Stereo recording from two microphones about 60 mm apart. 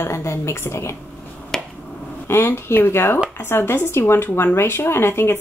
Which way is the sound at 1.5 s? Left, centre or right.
Centre.